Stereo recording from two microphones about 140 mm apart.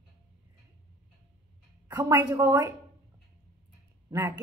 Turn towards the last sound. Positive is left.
turn(degrees=-20)  # may be behind; listen again after turning